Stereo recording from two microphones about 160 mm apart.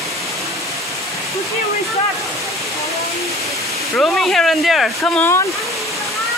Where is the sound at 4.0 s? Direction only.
Centre (ahead or behind).